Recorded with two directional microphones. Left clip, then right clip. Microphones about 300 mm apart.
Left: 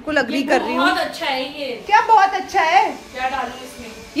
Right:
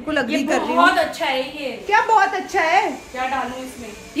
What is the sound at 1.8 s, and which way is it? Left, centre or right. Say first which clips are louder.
Speech: left 3 dB; centre.